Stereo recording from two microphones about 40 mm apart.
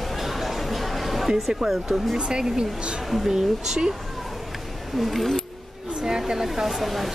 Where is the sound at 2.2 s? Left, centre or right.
Centre.